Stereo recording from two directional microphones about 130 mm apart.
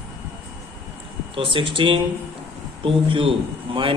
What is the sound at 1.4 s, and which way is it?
A man's voice, 40° right (ahead or behind).